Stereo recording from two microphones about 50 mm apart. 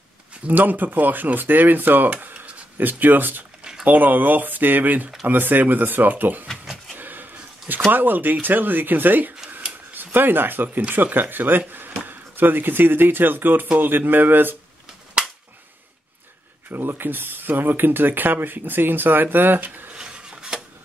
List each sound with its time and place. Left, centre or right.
0.5 s speech: right
2.0 s speech: right
7.0 s a sound: right
7.9 s speech: right
16.7 s speech: right
19.9 s a sound: centre